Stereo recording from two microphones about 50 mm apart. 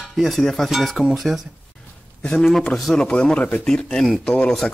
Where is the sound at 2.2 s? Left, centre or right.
Left.